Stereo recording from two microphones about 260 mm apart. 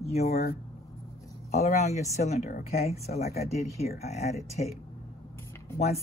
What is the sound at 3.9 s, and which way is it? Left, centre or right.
Speech, left.